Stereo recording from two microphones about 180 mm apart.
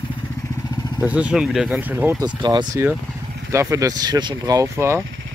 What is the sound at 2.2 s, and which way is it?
Speech, 25° right (ahead or behind).